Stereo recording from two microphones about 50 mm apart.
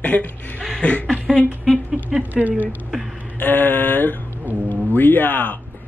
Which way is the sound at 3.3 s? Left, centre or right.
Left.